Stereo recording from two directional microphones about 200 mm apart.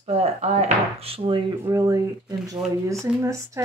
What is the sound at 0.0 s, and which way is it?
Speech, 35° right (ahead or behind).